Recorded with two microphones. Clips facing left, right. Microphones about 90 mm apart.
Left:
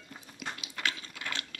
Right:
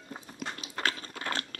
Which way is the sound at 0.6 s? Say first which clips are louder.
Right 4 dB; 40° right (ahead or behind).